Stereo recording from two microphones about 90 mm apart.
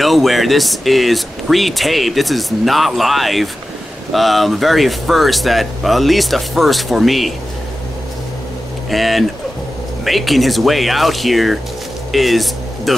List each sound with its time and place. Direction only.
0.0 s speech: centre (ahead or behind)
8.9 s speech: centre (ahead or behind)